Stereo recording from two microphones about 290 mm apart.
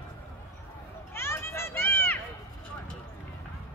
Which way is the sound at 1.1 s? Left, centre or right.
Centre.